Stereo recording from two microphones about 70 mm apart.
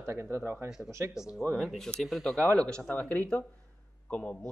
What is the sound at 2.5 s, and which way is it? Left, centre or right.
A man's voice, centre.